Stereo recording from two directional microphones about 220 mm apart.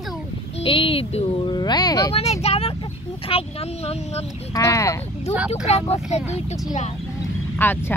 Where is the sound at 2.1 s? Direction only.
30° left (ahead or behind).